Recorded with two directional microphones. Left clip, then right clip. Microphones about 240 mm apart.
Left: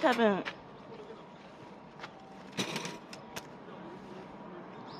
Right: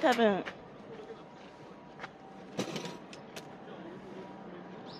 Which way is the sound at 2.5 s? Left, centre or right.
Centre.